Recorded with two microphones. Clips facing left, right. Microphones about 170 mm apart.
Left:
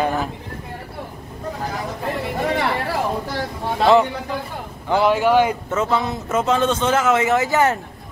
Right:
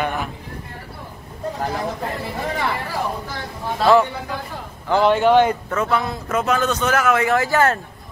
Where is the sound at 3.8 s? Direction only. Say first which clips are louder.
Even; 20° left (ahead or behind).